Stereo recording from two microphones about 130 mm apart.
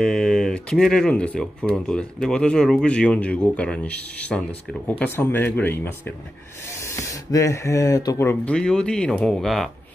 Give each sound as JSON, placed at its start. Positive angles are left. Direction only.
{"t": 0.0, "sound": "speech", "side_deg": 5}
{"t": 8.5, "sound": "speech", "side_deg": 5}